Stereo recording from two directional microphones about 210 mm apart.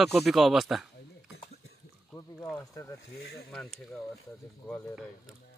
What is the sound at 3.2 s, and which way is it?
Speech, 50° left (ahead or behind).